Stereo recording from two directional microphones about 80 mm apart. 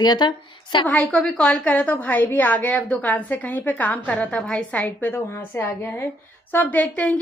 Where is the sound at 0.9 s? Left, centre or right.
Centre.